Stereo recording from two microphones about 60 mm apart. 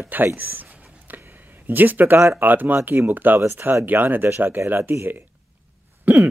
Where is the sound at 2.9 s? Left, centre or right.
Right.